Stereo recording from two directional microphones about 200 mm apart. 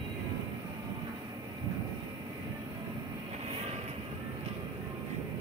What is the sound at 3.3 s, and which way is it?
Vehicle, 35° right (ahead or behind).